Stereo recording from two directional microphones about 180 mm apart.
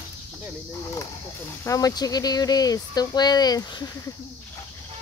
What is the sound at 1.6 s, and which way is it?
Speech, 20° left (ahead or behind).